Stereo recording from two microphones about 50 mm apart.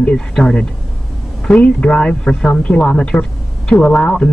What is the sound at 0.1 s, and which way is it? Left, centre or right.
Speech, centre.